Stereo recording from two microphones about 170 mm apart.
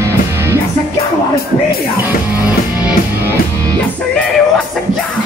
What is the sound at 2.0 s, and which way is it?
Music, 10° right (ahead or behind).